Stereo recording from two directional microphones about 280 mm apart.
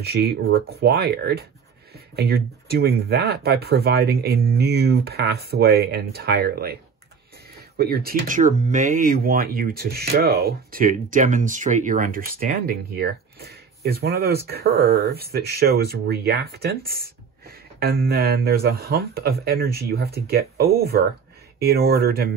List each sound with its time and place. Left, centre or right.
0.0 s speech: right
17.5 s music: right
18.0 s speech: right